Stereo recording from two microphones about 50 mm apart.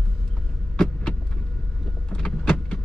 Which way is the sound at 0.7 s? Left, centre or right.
Centre.